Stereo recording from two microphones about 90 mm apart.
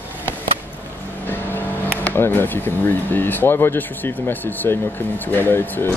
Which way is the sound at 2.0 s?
25° left (ahead or behind).